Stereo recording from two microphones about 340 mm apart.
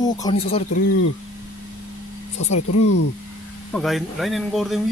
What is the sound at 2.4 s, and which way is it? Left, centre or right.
Speech, left.